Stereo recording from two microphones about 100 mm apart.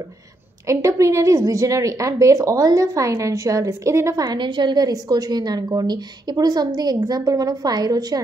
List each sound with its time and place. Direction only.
0.7 s a woman's voice: 30° right (ahead or behind)
4.4 s a woman's voice: 50° right (ahead or behind)